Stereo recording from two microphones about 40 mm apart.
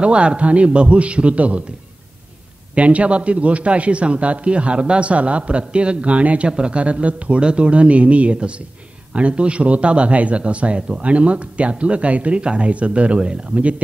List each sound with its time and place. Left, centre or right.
0.0 s a man's voice: right
2.7 s a man's voice: right